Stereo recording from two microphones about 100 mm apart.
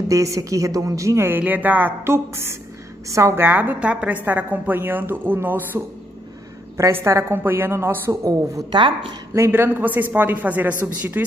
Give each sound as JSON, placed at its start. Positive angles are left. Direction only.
{"t": 0.1, "sound": "a woman's voice", "side_deg": -35}
{"t": 3.4, "sound": "a woman's voice", "side_deg": -20}